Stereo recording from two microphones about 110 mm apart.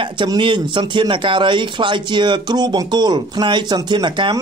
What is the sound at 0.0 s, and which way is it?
Speech, 45° right (ahead or behind).